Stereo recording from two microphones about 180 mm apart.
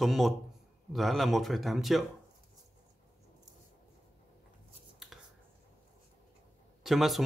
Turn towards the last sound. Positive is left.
turn(degrees=0)  # may be behind; listen again after turning